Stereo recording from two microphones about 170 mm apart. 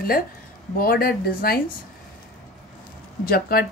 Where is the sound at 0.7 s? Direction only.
60° left (ahead or behind).